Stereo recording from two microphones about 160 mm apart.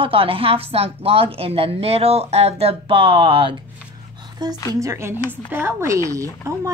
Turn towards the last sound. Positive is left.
turn(degrees=-15)  # may be behind; listen again after turning